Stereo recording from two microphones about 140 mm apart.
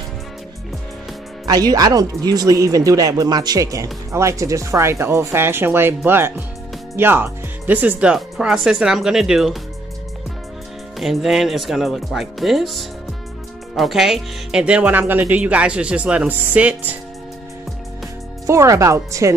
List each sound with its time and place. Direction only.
1.4 s speech: 25° right (ahead or behind); by 9.6 s 5° right (ahead or behind)
11.0 s speech: centre (ahead or behind)
18.5 s speech: 20° right (ahead or behind)